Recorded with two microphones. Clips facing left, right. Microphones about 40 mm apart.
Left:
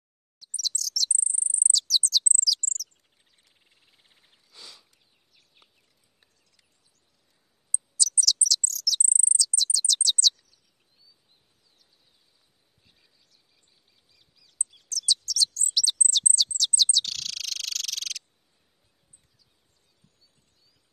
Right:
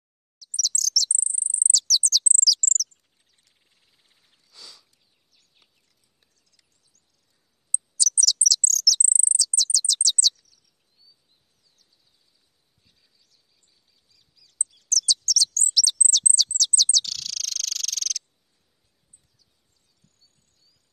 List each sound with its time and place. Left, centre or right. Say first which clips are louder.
0.4 s chirp: right 3 dB; left
1.7 s bird: right 1 dB; centre
3.4 s a sound: left 3 dB; centre
8.0 s chirp: right 3 dB; left
9.2 s bird: right 1 dB; left
12.8 s a sound: left 2 dB; left
14.1 s chirp: right 2 dB; centre
15.7 s bird: right 2 dB; left
20.0 s a sound: even; centre